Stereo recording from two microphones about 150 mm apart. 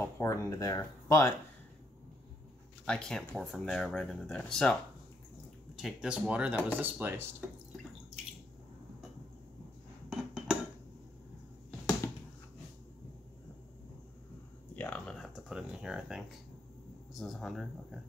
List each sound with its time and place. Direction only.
0.0 s speech: 20° left (ahead or behind)
2.8 s speech: 5° left (ahead or behind)
5.8 s speech: 5° right (ahead or behind)
10.0 s cutlery: 5° right (ahead or behind)
12.0 s a sound: 20° left (ahead or behind)
14.8 s typing: 5° left (ahead or behind)
17.1 s speech: centre (ahead or behind)